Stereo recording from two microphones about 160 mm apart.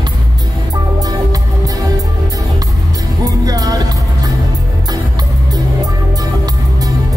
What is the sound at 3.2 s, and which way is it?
Music, 20° right (ahead or behind).